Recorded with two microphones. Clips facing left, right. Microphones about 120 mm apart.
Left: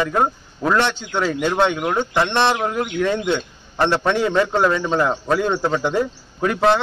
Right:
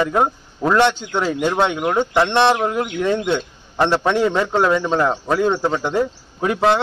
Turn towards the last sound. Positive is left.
turn(degrees=-15)  # may be behind; listen again after turning